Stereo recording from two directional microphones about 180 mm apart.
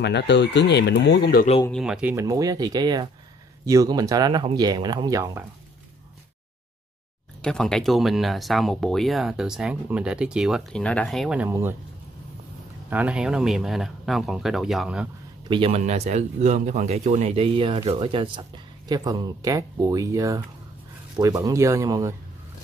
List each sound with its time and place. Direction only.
0.0 s speech: 75° left (ahead or behind)
1.7 s speech: centre (ahead or behind); by 5.4 s 20° right (ahead or behind)
7.4 s speech: 5° left (ahead or behind); by 11.7 s 10° right (ahead or behind)
12.9 s speech: 5° right (ahead or behind)
15.4 s speech: 30° right (ahead or behind)